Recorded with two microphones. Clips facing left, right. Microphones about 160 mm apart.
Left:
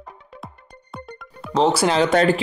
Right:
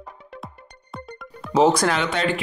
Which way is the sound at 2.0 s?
45° left (ahead or behind).